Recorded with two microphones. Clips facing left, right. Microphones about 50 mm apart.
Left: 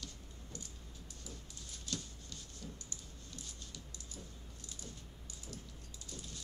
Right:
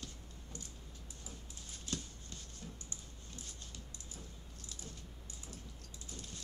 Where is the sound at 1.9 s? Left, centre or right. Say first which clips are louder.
Right 1 dB; right.